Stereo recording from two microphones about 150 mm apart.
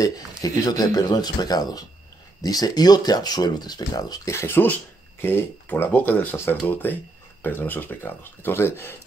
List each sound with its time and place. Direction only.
0.4 s speech: 25° left (ahead or behind)